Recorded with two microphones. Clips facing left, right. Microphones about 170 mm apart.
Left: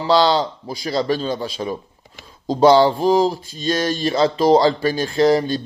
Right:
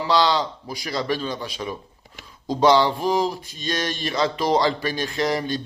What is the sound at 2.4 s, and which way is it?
Mantra, 30° left (ahead or behind).